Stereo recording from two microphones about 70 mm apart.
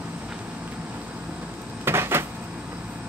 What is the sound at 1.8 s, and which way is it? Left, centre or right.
Cupboard open or close, right.